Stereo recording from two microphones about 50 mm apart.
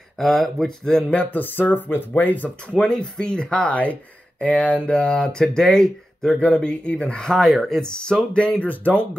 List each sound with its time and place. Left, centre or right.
0.2 s speech: centre
1.1 s speech: left
2.6 s speech: centre
6.5 s speech: left
7.3 s speech: centre; by 9.0 s left